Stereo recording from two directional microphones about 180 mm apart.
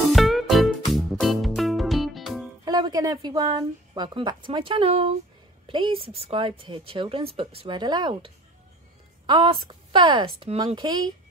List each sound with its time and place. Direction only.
0.1 s music: centre (ahead or behind)
2.6 s a woman's voice: 20° right (ahead or behind)